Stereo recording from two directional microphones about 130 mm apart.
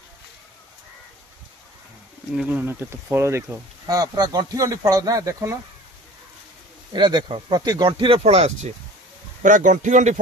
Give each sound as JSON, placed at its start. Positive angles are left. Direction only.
{"t": 2.3, "sound": "speech", "side_deg": -10}
{"t": 6.9, "sound": "speech", "side_deg": -35}
{"t": 7.6, "sound": "speech", "side_deg": -30}
{"t": 8.2, "sound": "speech", "side_deg": -55}
{"t": 9.4, "sound": "a man's voice", "side_deg": -80}